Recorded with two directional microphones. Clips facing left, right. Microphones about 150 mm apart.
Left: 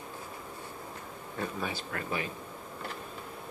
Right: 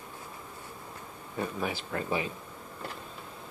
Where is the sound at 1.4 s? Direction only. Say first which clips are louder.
Right 2 dB; 15° right (ahead or behind).